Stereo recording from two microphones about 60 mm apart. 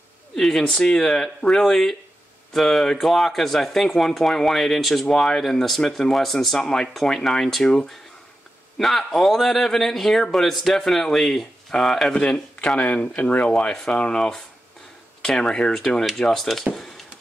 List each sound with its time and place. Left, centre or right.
0.4 s speech: centre
12.7 s speech: left; by 16.6 s centre
16.7 s a sound: centre